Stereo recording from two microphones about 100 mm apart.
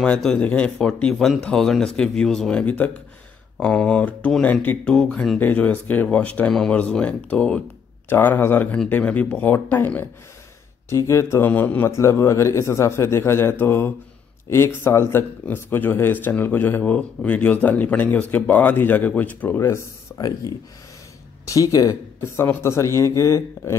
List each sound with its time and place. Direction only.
0.0 s a man's voice: 10° left (ahead or behind)
10.9 s a man's voice: 30° left (ahead or behind)
20.2 s speech: 35° left (ahead or behind)
22.2 s a man's voice: 25° left (ahead or behind)